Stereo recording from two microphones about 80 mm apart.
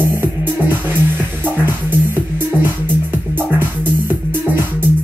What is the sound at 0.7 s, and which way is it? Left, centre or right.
Music, right.